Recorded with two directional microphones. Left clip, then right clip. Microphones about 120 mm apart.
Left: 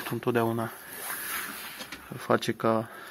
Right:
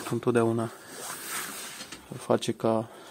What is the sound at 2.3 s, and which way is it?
Speech, 15° right (ahead or behind).